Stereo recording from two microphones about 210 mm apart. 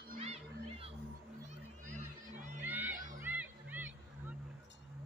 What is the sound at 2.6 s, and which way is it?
Music, 10° right (ahead or behind).